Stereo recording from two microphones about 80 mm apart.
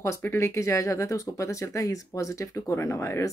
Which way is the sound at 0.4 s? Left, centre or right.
Left.